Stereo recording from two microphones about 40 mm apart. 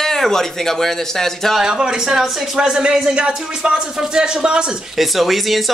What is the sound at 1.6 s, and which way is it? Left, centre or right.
Speech, centre.